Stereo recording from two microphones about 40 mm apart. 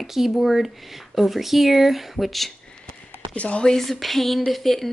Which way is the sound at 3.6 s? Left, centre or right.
Centre.